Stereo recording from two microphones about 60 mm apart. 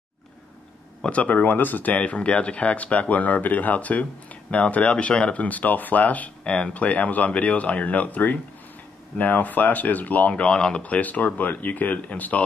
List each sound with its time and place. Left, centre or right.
1.0 s speech: left